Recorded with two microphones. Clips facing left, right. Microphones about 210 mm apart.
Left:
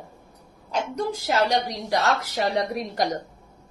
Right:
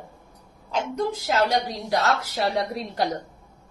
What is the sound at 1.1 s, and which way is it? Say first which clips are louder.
A woman's voice: left 1 dB; 15° left (ahead or behind).